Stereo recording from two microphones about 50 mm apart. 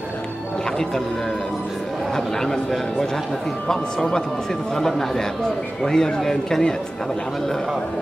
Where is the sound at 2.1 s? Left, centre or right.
Centre.